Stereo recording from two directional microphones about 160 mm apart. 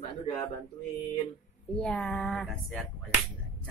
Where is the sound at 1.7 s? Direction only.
5° left (ahead or behind).